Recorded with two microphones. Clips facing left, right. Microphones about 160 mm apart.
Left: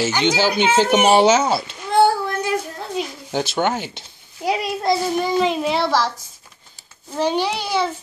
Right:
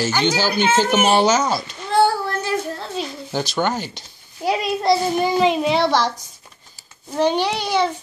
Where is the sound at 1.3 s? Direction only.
25° left (ahead or behind).